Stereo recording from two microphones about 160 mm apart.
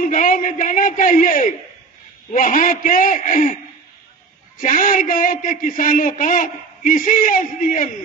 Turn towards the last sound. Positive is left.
turn(degrees=60)  # may be behind; listen again after turning